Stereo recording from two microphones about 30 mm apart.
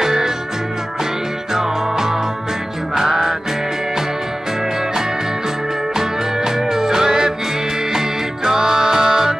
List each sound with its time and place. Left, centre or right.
0.0 s music: centre
1.5 s music: centre
5.9 s music: centre
8.5 s music: centre